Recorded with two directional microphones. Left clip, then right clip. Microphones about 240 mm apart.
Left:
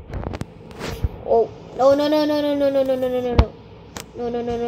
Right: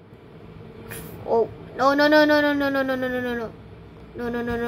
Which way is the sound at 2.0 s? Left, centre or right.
Right.